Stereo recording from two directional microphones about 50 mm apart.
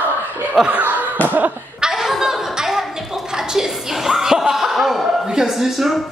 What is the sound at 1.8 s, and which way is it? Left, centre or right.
Chuckle, centre.